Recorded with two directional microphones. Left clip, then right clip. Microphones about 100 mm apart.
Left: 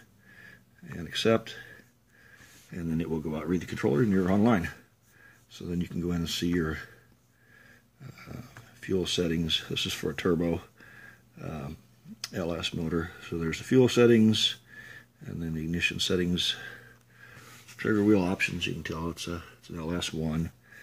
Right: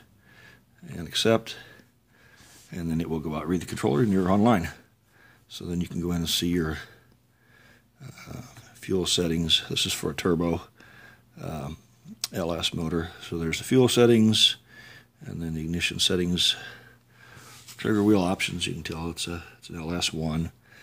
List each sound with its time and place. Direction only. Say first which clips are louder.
0.4 s a sound: even; 30° right (ahead or behind)
2.7 s speech: right 2 dB; 35° right (ahead or behind)
3.4 s speech: right 1 dB; 25° right (ahead or behind)
5.9 s speech: right 2 dB; 15° right (ahead or behind)
6.3 s speech: right 4 dB; 30° right (ahead or behind)
8.0 s a sound: right 3 dB; 25° right (ahead or behind)
8.7 s speech: right 3 dB; 30° right (ahead or behind)
10.1 s a sound: right 1 dB; 35° right (ahead or behind)
11.3 s speech: right 4 dB; 40° right (ahead or behind)
12.3 s speech: right 4 dB; 25° right (ahead or behind)
12.9 s speech: right 2 dB; 25° right (ahead or behind)
17.7 s speech: right 2 dB; 40° right (ahead or behind)
18.9 s speech: right 2 dB; 5° left (ahead or behind)
19.9 s speech: right 4 dB; 25° right (ahead or behind)